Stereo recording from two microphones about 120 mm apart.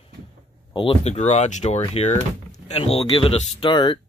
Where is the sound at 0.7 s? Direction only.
50° left (ahead or behind).